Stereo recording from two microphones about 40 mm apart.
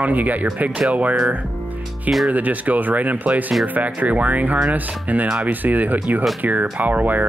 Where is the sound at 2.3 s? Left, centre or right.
Right.